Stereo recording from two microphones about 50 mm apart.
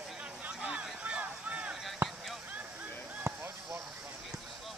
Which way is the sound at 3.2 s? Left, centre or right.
Right.